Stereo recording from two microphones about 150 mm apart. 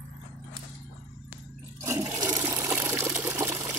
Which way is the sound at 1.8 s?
20° right (ahead or behind).